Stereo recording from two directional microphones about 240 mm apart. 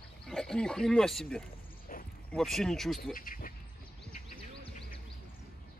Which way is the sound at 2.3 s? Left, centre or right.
Centre.